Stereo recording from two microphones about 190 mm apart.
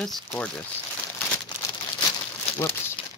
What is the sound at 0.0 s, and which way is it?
Speech, 5° left (ahead or behind).